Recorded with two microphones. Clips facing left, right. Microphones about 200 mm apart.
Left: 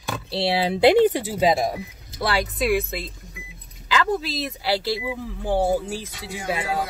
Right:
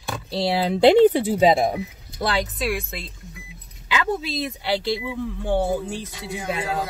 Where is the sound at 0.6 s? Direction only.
5° left (ahead or behind).